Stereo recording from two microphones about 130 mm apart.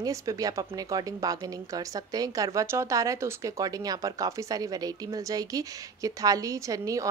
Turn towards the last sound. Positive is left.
turn(degrees=-25)  # may be behind; listen again after turning